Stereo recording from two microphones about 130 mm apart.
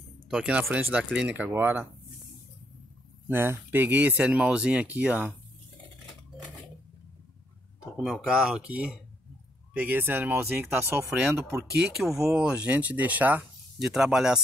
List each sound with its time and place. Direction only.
0.3 s speech: 5° right (ahead or behind)
3.3 s speech: 15° right (ahead or behind)
7.8 s speech: 5° right (ahead or behind)
11.7 s speech: centre (ahead or behind)